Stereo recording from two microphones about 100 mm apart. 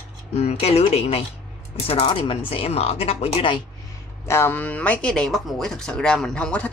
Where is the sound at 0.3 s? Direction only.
90° left.